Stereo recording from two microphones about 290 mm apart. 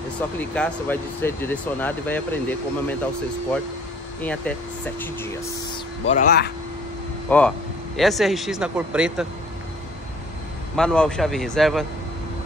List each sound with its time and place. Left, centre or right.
0.4 s speech: centre
4.2 s speech: centre
6.0 s speech: left
7.2 s speech: centre
10.8 s speech: centre